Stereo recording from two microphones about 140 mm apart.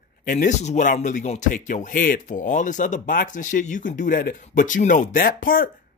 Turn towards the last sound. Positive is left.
turn(degrees=90)